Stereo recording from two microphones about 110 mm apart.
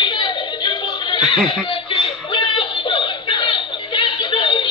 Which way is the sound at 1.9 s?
50° left (ahead or behind).